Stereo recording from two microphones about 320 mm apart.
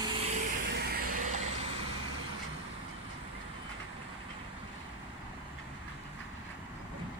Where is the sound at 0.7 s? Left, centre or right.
Right.